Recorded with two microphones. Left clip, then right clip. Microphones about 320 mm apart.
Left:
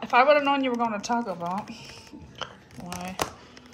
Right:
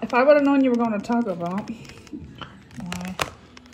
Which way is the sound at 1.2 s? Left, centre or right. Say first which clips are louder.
Right 3 dB; right.